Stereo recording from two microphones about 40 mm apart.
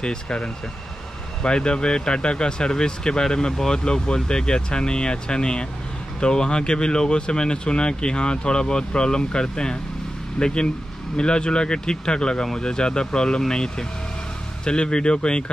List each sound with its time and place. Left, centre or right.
0.0 s speech: left